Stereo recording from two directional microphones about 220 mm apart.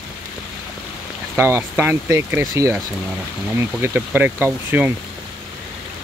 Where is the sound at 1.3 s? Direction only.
10° right (ahead or behind).